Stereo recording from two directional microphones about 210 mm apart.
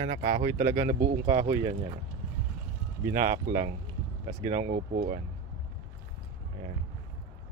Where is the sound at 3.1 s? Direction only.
40° right (ahead or behind).